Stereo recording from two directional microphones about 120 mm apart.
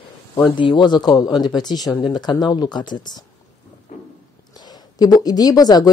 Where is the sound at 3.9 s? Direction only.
90° left.